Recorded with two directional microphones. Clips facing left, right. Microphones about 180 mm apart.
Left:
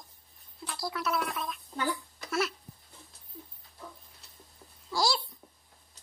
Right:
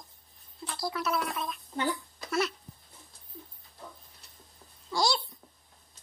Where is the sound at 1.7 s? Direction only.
20° right (ahead or behind).